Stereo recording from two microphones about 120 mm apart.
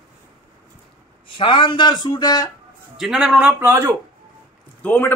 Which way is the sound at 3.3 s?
15° right (ahead or behind).